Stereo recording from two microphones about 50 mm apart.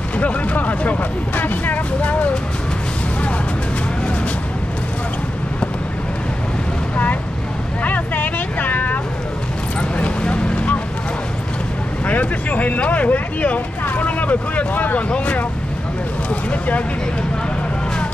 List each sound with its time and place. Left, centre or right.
0.2 s speech: left
7.8 s vehicle: left
9.8 s vehicle: left
12.1 s speech: left